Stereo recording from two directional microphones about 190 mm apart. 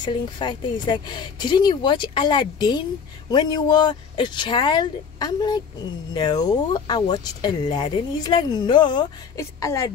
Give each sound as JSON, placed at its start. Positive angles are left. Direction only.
{"t": 0.0, "sound": "speech", "side_deg": 25}